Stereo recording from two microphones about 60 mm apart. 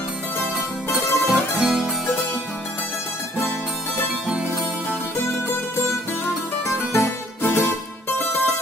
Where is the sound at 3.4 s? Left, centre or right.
Left.